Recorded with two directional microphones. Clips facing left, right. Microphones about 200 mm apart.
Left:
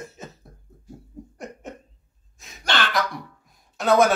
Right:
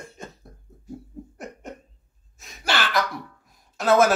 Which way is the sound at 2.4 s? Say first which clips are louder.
Even; 5° right (ahead or behind).